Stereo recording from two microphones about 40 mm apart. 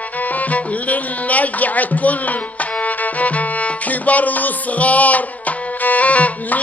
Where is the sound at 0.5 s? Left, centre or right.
Left.